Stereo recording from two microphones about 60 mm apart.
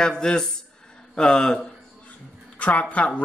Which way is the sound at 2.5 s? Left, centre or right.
Left.